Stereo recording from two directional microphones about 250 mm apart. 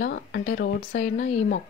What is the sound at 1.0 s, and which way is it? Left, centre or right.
Speech, left.